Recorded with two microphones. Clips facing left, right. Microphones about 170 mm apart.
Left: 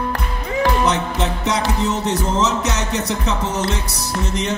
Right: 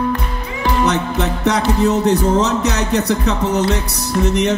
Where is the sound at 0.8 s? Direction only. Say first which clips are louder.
Right 2 dB; 65° right (ahead or behind).